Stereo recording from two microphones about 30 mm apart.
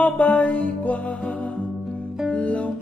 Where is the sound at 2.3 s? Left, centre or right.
Left.